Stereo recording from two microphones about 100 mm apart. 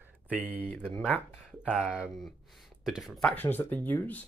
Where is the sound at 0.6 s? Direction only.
20° left (ahead or behind).